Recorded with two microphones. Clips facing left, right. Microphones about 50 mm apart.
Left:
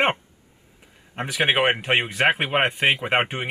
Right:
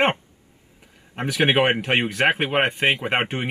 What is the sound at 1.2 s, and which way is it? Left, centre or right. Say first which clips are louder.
Speech: right 2 dB; centre.